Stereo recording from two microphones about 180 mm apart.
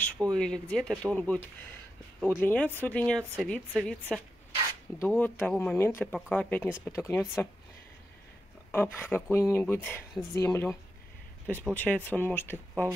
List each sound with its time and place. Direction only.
0.0 s speech: 5° left (ahead or behind)
8.7 s speech: 10° left (ahead or behind)
11.7 s speech: 10° left (ahead or behind)